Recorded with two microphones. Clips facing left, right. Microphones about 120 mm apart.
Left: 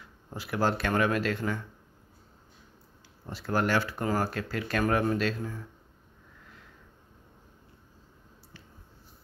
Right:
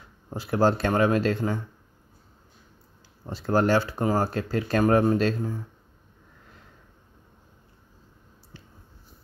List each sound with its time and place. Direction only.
0.3 s speech: 30° right (ahead or behind)
3.3 s speech: 30° right (ahead or behind)